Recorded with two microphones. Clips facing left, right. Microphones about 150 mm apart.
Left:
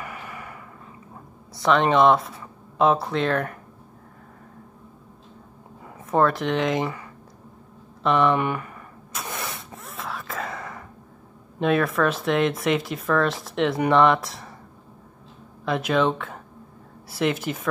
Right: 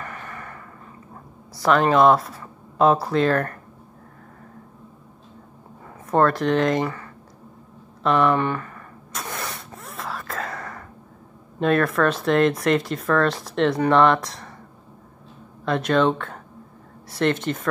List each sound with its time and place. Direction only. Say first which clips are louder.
0.0 s a sound: right 1 dB; 10° left (ahead or behind)
1.5 s speech: right 1 dB; centre (ahead or behind)
6.0 s speech: right 2 dB; centre (ahead or behind)
8.0 s speech: right 1 dB; centre (ahead or behind)
8.4 s speech: right 1 dB; 15° left (ahead or behind)
9.1 s sneeze: right 1 dB; centre (ahead or behind)
11.6 s speech: right 2 dB; centre (ahead or behind)
15.6 s speech: right 2 dB; centre (ahead or behind)